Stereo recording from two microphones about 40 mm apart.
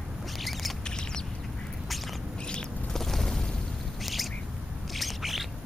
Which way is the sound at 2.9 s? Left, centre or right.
Centre.